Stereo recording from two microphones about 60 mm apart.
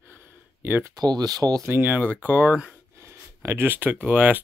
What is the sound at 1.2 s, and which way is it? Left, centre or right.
Speech, right.